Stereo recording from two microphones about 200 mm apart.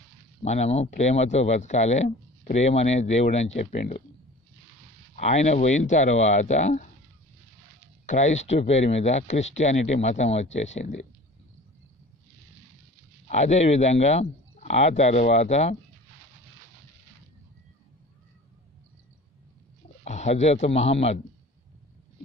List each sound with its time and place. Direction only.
0.4 s speech: 35° left (ahead or behind)
5.1 s speech: 35° left (ahead or behind)
8.1 s speech: 35° left (ahead or behind)
13.3 s speech: 35° left (ahead or behind)
20.1 s speech: 35° left (ahead or behind)